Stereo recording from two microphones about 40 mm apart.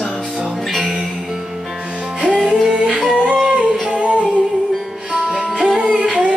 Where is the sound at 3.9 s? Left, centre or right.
Right.